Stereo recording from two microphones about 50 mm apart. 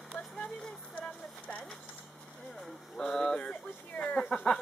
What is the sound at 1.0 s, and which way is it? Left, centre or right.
Speech, left.